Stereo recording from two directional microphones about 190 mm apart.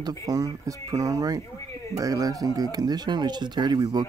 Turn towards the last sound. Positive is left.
turn(degrees=-20)  # may be behind; listen again after turning